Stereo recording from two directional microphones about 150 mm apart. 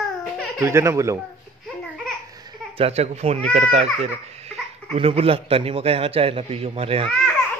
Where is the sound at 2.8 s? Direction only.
45° right (ahead or behind).